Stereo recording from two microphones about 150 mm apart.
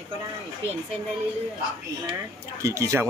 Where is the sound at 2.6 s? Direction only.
20° right (ahead or behind).